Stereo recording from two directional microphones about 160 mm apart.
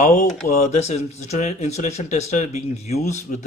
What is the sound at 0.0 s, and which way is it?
Speech, 45° left (ahead or behind).